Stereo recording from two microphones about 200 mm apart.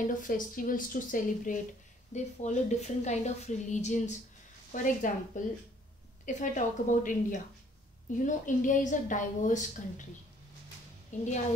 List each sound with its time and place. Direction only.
0.0 s a woman's voice: 40° left (ahead or behind)
11.1 s a woman's voice: 35° left (ahead or behind)